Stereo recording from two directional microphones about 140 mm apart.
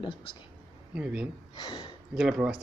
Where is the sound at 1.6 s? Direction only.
30° left (ahead or behind).